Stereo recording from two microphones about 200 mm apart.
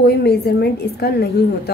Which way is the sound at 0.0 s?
55° left (ahead or behind).